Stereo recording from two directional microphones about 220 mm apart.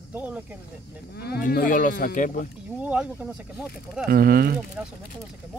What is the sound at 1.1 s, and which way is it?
Speech, 45° left (ahead or behind).